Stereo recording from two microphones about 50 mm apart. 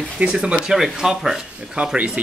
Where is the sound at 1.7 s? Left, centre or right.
Right.